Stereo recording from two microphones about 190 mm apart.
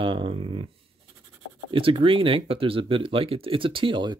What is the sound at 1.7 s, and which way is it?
Speech, 25° right (ahead or behind).